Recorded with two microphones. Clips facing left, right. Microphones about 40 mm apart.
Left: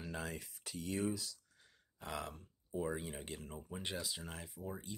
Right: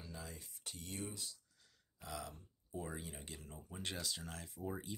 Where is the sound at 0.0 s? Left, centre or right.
Left.